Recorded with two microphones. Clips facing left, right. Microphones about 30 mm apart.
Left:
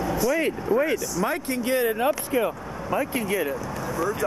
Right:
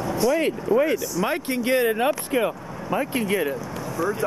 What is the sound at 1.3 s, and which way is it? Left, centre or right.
Speech, right.